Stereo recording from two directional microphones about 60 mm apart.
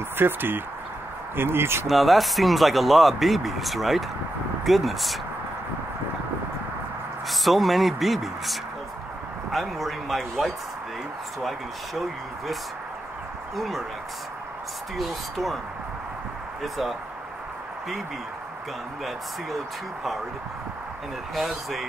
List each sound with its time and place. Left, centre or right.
0.2 s speech: right
1.9 s speech: centre
7.2 s speech: centre
13.6 s speech: centre
15.0 s speech: centre
16.6 s speech: centre
19.0 s speech: centre
21.4 s speech: centre